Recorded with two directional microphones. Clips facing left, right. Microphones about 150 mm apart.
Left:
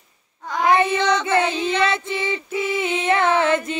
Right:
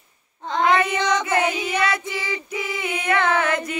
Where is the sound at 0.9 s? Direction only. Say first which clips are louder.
Left 2 dB; 15° right (ahead or behind).